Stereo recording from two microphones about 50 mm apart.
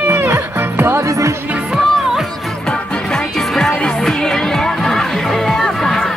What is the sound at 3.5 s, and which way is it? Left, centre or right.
Music, centre.